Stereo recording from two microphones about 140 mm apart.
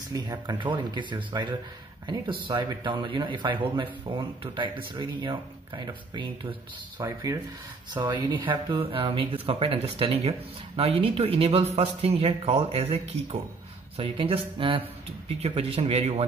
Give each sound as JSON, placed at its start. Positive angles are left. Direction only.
{"t": 0.1, "sound": "speech", "side_deg": -30}